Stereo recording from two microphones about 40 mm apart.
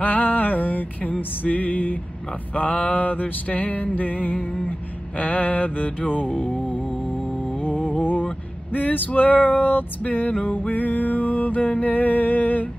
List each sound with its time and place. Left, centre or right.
0.0 s a sound: left
1.4 s music: left
8.0 s vehicle: left
8.7 s music: left